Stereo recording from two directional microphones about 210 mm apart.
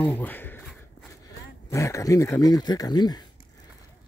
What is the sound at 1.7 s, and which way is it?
Speech, 15° left (ahead or behind).